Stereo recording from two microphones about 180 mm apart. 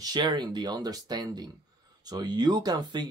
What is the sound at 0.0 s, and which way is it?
Speech, 25° right (ahead or behind).